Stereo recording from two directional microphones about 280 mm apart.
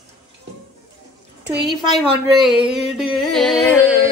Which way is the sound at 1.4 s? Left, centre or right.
Right.